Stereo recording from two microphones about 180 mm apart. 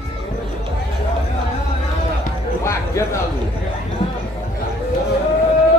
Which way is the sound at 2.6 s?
15° left (ahead or behind).